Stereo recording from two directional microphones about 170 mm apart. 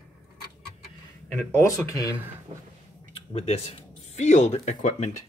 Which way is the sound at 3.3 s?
35° left (ahead or behind).